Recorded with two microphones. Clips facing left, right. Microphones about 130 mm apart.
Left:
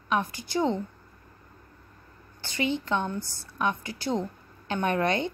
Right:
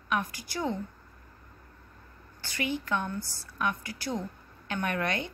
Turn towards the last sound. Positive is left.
turn(degrees=30)  # may be behind; listen again after turning